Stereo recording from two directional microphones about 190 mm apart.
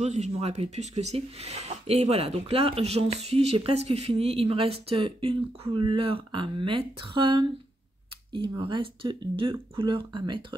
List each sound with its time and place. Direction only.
0.0 s speech: 35° right (ahead or behind)